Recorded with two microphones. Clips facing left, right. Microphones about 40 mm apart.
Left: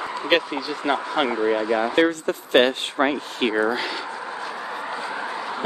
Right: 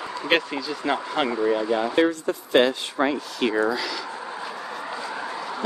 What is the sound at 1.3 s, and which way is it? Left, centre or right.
Speech, left.